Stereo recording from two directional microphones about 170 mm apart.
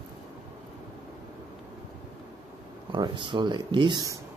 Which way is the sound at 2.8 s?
30° right (ahead or behind).